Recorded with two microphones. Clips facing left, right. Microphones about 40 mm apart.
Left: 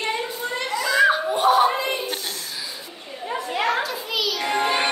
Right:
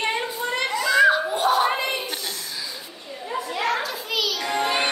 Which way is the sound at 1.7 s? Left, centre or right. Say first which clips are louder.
Even; right.